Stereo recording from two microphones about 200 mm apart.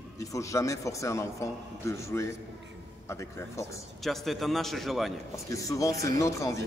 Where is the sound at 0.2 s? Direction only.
15° left (ahead or behind).